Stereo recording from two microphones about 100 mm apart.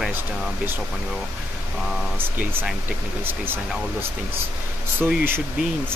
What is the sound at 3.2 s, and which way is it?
Speech, 20° right (ahead or behind).